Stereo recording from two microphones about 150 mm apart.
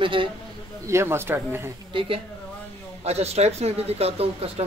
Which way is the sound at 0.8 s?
15° right (ahead or behind).